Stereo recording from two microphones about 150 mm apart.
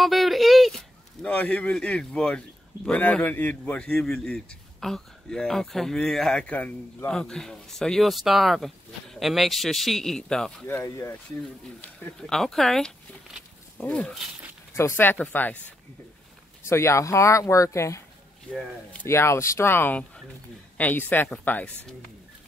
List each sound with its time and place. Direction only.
0.0 s speech: centre (ahead or behind)
10.8 s speech: 20° left (ahead or behind)
11.8 s speech: 5° left (ahead or behind)
16.6 s speech: 15° left (ahead or behind)